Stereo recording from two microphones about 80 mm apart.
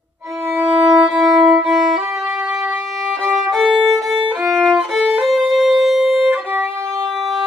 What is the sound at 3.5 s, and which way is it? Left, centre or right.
Violin, centre.